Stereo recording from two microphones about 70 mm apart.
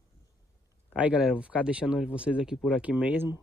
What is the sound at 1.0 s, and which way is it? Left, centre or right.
Speech, centre.